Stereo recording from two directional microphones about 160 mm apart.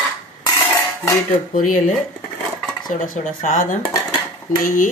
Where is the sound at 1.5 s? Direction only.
55° left (ahead or behind).